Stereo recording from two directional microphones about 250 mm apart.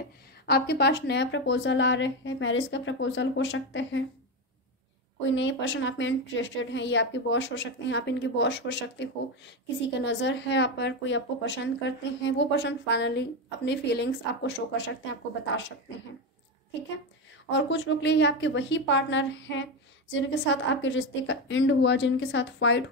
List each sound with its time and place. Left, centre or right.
0.5 s a woman's voice: left
5.2 s a woman's voice: left
17.5 s a woman's voice: left